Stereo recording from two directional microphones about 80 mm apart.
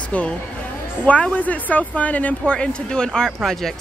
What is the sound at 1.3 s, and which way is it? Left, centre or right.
Speech, centre.